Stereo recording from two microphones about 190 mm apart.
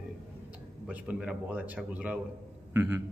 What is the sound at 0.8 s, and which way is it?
A man's voice, 5° right (ahead or behind).